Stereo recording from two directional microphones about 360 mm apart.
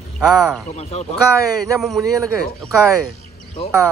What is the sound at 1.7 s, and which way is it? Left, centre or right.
Speech, centre.